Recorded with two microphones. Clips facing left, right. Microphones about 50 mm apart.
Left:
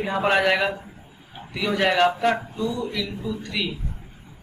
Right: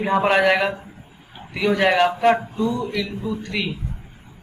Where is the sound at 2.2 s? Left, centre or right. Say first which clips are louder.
Right 5 dB; right.